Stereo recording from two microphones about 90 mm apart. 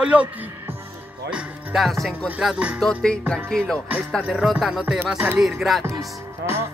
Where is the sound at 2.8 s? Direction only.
5° left (ahead or behind).